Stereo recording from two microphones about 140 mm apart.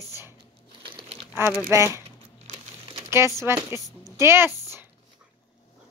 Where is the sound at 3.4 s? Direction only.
20° right (ahead or behind).